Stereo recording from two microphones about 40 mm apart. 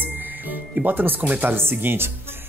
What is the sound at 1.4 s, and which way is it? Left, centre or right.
Speech, right.